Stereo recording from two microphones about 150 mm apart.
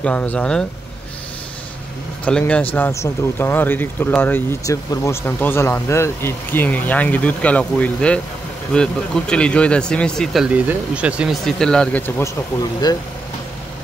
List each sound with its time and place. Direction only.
0.0 s speech: 10° left (ahead or behind)
2.2 s speech: 5° left (ahead or behind)
12.8 s speech: 25° left (ahead or behind)